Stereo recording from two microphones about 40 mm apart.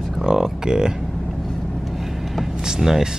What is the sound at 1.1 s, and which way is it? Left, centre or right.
Vehicle, centre.